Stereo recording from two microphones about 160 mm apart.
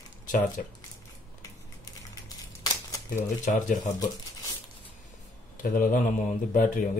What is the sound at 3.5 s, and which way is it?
Speech, 50° left (ahead or behind).